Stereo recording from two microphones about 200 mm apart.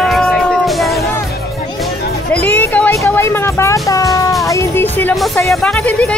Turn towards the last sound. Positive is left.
turn(degrees=5)  # may be behind; listen again after turning